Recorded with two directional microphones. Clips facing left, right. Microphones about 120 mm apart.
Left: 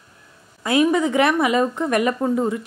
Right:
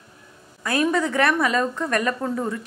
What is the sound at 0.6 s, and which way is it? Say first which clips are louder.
A woman's voice: left 4 dB; 20° left (ahead or behind).